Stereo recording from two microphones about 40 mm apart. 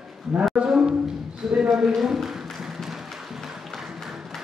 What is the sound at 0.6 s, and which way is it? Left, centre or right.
Speech, centre.